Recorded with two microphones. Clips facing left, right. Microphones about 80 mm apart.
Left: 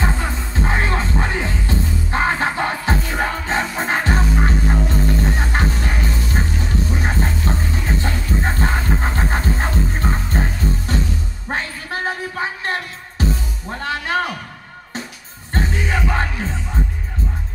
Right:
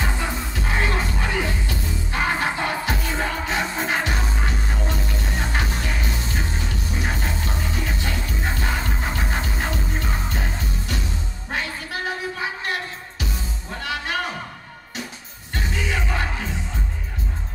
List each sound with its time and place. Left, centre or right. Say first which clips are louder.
0.0 s music: left 3 dB; left
7.4 s a sound: left 4 dB; left
11.4 s music: left 3 dB; left
15.5 s music: left 4 dB; left